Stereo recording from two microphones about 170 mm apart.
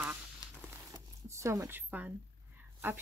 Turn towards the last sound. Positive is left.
turn(degrees=-10)  # may be behind; listen again after turning